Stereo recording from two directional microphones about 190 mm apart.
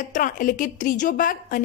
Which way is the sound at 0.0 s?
45° left (ahead or behind).